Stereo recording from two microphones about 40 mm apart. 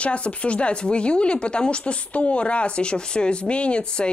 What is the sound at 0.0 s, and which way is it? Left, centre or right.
A woman's voice, left.